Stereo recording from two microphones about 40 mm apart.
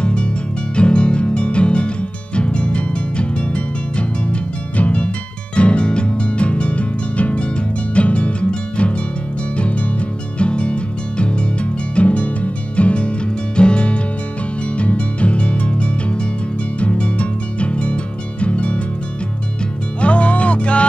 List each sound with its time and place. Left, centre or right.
0.0 s music: left
20.0 s music: left